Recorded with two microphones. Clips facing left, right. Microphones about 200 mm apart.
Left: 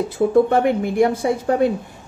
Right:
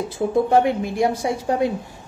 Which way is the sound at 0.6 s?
55° left (ahead or behind).